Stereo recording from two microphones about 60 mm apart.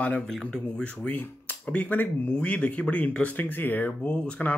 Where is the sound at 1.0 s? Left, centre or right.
Left.